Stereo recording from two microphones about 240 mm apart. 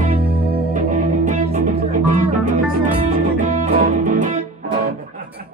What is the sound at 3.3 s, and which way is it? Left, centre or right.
Music, right.